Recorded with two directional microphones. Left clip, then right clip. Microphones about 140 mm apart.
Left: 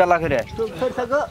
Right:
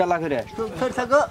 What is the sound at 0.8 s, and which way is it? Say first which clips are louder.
Speech: right 3 dB; 30° right (ahead or behind).